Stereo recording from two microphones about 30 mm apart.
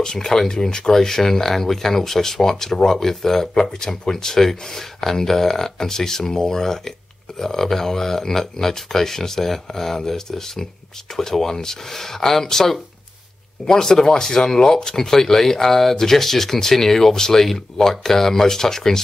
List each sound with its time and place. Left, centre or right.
0.0 s speech: centre
3.5 s speech: left